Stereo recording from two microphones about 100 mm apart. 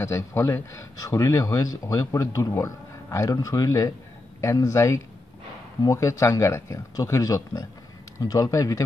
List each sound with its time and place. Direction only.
0.0 s speech: 30° left (ahead or behind)